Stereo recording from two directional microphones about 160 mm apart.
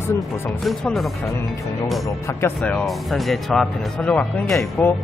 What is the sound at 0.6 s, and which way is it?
Speech, centre (ahead or behind).